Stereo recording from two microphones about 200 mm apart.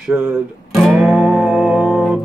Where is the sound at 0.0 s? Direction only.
10° right (ahead or behind).